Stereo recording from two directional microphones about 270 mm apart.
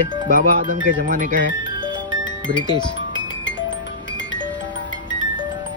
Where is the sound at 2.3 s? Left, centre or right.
Centre.